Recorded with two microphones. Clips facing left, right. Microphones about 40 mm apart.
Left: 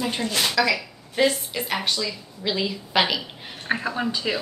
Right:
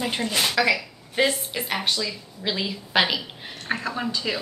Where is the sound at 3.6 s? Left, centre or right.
Centre.